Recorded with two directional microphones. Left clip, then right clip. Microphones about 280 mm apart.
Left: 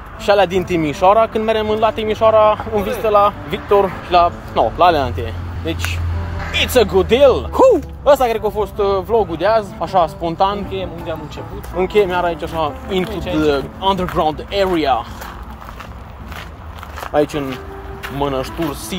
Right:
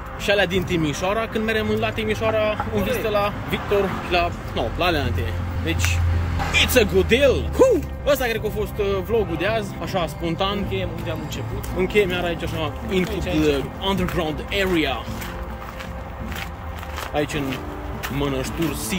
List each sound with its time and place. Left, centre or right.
0.2 s speech: centre
17.1 s speech: centre